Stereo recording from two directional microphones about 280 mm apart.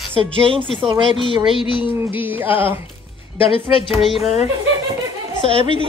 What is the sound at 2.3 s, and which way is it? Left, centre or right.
Speech, centre.